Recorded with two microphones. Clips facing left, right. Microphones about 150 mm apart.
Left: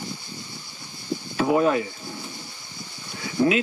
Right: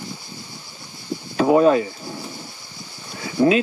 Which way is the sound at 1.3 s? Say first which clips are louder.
Right 6 dB; 25° right (ahead or behind).